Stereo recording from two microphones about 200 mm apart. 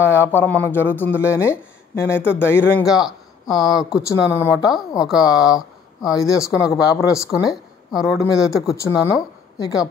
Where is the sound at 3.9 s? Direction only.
15° left (ahead or behind).